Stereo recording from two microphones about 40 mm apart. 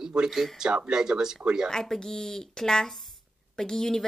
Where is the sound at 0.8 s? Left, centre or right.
Centre.